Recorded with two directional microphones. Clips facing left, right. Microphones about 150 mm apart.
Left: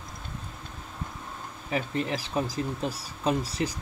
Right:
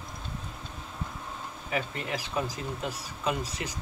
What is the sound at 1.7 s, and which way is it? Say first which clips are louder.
Speech: left 4 dB; 35° left (ahead or behind).